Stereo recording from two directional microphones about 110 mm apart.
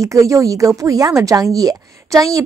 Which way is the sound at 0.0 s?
30° right (ahead or behind).